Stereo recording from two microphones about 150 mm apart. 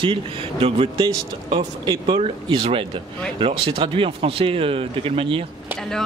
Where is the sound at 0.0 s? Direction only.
35° right (ahead or behind).